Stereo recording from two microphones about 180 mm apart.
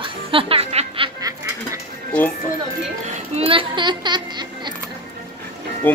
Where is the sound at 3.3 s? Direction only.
30° right (ahead or behind).